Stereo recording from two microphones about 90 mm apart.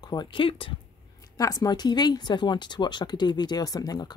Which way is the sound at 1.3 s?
40° left (ahead or behind).